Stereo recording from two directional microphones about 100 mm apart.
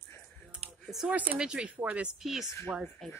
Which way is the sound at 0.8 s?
5° right (ahead or behind).